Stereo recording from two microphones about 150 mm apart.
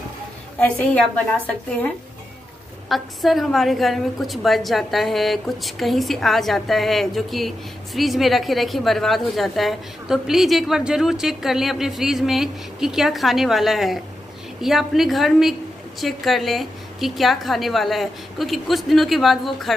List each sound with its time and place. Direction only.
0.6 s a woman's voice: 10° left (ahead or behind)
2.9 s a woman's voice: centre (ahead or behind)